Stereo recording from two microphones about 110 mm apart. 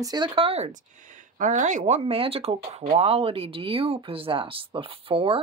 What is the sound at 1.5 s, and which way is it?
Speech, 90° right.